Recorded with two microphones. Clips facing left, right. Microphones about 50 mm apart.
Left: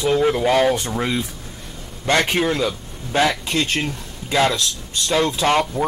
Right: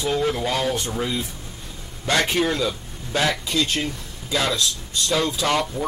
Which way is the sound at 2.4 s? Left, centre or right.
Left.